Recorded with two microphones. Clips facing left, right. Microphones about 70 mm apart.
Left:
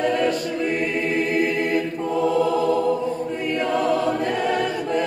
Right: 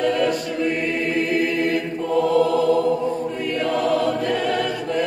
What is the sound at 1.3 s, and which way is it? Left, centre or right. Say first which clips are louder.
Chant: right 1 dB; left.